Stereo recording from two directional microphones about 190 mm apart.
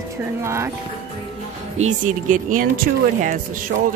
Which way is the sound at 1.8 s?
40° right (ahead or behind).